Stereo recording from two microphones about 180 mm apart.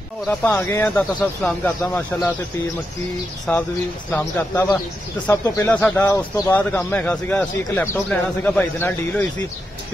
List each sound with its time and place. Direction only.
0.3 s speech: 10° left (ahead or behind)
3.5 s speech: 5° left (ahead or behind)